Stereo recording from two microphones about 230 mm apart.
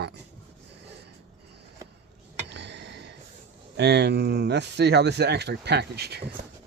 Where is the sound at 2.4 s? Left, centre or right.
Right.